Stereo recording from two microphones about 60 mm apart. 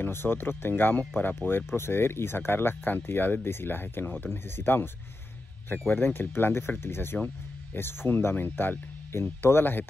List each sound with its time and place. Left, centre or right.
0.0 s speech: left